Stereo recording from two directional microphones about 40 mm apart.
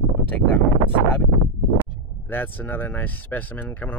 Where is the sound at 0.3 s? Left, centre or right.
Left.